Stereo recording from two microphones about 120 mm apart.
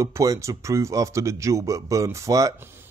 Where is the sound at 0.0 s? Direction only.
25° right (ahead or behind).